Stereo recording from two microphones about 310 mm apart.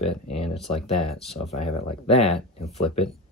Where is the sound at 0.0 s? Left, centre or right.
Centre.